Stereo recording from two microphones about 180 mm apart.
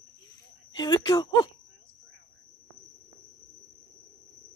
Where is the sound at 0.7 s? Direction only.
20° left (ahead or behind).